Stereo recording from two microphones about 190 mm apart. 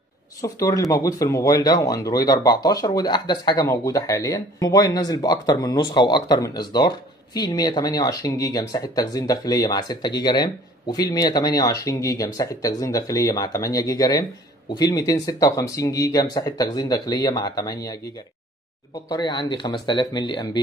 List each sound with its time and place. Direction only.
0.4 s speech: 15° left (ahead or behind)
19.0 s speech: 20° left (ahead or behind)